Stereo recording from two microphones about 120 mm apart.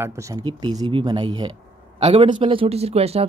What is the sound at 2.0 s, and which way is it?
Speech, 65° right (ahead or behind).